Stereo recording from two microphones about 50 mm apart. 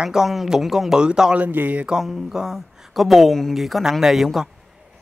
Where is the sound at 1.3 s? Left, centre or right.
Right.